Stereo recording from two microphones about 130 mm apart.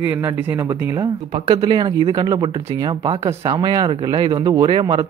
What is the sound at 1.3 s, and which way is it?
Speech, 40° right (ahead or behind).